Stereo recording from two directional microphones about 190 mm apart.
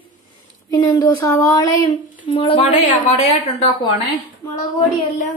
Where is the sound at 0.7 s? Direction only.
25° left (ahead or behind).